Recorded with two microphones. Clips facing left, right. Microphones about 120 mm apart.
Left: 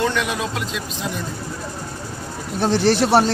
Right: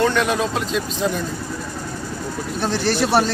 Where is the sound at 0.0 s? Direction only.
40° right (ahead or behind).